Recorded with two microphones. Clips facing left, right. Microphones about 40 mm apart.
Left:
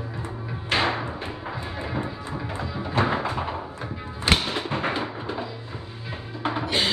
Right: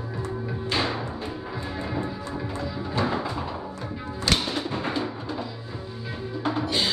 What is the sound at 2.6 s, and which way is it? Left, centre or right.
Music, left.